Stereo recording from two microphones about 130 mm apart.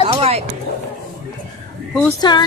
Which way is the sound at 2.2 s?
35° left (ahead or behind).